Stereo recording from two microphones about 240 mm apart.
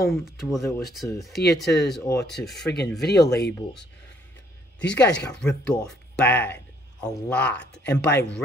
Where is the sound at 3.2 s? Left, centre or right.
Left.